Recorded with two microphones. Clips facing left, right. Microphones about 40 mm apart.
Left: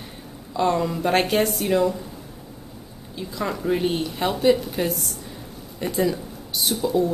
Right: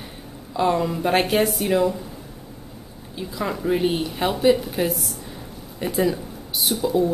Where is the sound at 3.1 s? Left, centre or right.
Centre.